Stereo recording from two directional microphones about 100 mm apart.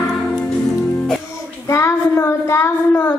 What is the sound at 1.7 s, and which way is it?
Child singing, 30° left (ahead or behind).